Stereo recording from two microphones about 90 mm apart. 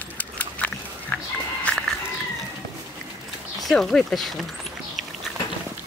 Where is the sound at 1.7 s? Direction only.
15° left (ahead or behind).